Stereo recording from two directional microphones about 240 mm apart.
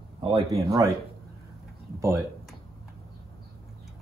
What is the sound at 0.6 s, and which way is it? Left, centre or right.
Speech, centre.